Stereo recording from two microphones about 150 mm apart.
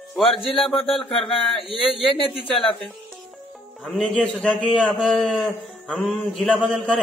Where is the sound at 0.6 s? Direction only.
Centre (ahead or behind).